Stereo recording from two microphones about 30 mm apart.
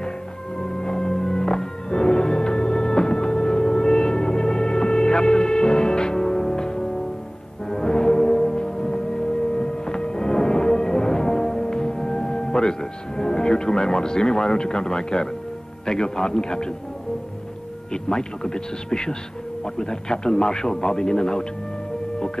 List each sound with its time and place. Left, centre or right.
0.6 s music: left
7.7 s foghorn: left
15.8 s a man's voice: left
17.9 s a man's voice: left